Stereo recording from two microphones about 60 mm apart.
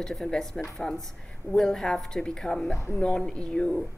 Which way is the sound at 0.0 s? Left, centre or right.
Centre.